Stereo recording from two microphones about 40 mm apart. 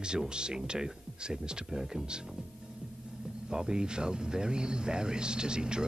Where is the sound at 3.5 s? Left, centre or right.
Centre.